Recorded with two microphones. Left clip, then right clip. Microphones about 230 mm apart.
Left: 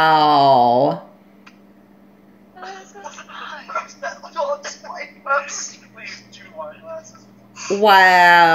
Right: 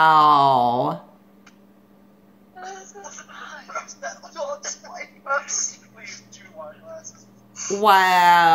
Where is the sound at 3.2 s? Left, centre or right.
Centre.